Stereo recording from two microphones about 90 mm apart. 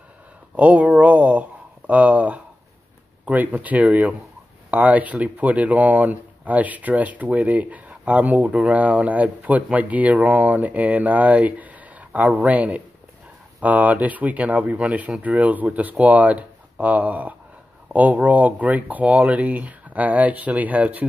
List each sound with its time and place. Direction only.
0.6 s speech: 15° right (ahead or behind)